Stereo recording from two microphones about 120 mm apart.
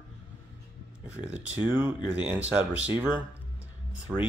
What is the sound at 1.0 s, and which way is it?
Speech, 10° right (ahead or behind).